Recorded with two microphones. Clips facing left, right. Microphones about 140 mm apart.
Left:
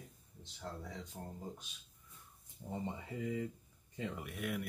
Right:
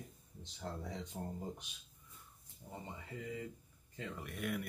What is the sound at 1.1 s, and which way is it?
Speech, 20° right (ahead or behind).